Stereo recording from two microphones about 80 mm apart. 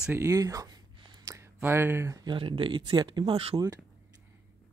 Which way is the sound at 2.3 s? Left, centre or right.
Right.